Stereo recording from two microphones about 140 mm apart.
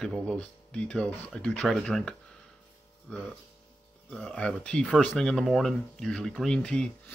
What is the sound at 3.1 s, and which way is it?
Speech, 5° left (ahead or behind).